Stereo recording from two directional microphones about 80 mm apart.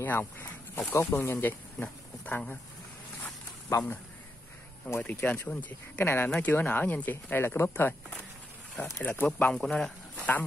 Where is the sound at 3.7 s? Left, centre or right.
Left.